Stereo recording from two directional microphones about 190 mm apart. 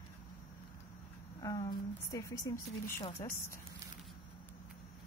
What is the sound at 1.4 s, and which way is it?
A woman's voice, 20° left (ahead or behind).